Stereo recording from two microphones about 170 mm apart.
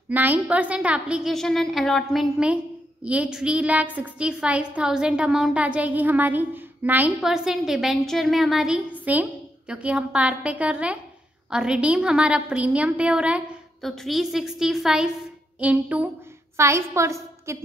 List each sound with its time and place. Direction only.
0.1 s a woman's voice: 10° right (ahead or behind)